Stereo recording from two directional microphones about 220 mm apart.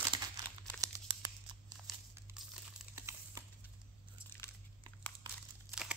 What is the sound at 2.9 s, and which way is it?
Crumpling, 10° right (ahead or behind).